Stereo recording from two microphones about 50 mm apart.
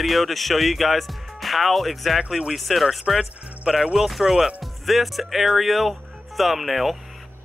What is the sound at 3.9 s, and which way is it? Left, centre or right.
Speech, centre.